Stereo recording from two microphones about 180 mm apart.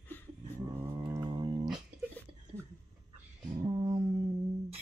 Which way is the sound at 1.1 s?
25° right (ahead or behind).